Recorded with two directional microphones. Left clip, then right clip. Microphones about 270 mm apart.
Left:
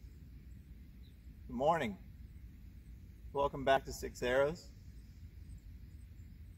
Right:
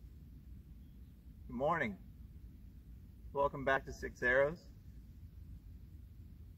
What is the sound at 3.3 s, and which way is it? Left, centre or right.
Speech, centre.